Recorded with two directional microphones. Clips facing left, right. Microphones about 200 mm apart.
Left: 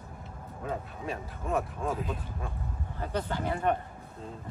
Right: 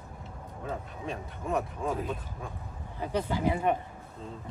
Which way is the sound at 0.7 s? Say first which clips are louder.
Left 1 dB; centre (ahead or behind).